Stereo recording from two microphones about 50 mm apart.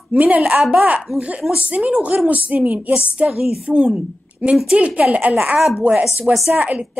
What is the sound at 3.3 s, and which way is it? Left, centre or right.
A woman's voice, centre.